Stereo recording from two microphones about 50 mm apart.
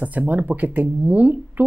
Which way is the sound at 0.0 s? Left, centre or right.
Right.